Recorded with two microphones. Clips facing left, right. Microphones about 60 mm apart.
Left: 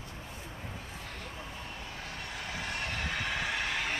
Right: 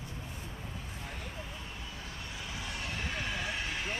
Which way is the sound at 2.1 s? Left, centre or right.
Left.